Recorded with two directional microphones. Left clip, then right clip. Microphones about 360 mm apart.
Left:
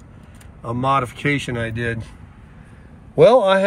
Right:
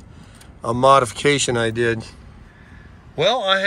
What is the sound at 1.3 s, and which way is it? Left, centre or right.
Speech, centre.